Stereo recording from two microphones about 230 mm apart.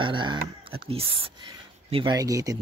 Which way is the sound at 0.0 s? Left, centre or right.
Right.